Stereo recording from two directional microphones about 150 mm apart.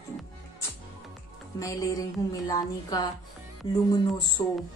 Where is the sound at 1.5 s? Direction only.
25° left (ahead or behind).